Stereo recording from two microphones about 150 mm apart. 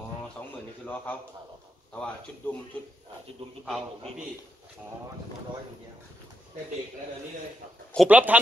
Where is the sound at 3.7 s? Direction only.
Centre (ahead or behind).